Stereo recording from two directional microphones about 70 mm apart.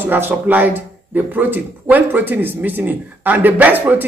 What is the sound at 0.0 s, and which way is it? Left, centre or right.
Speech, right.